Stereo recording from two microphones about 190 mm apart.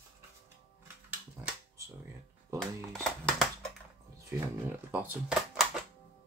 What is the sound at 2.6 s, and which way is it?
Music, centre (ahead or behind).